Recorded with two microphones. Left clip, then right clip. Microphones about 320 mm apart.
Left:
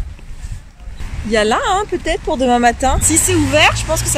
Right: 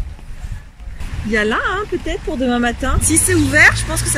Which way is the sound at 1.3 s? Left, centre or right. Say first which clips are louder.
Left 3 dB; centre.